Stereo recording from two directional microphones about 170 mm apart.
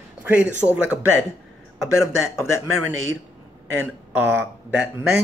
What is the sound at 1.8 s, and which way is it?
Speech, 15° left (ahead or behind).